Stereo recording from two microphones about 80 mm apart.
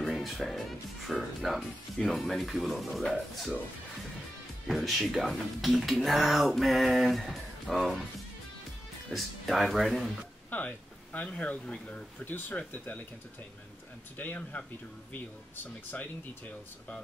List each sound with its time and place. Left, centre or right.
0.0 s music: centre
1.4 s speech: centre
4.6 s speech: centre
9.1 s speech: centre
10.5 s a sound: left
11.2 s speech: centre
14.1 s speech: left